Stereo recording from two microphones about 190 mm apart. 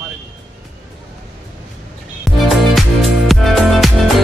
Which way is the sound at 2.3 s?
Centre (ahead or behind).